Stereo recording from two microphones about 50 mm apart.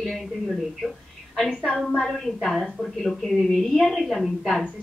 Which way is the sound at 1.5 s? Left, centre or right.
Left.